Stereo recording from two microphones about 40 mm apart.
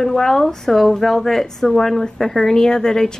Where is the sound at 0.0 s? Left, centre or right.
Centre.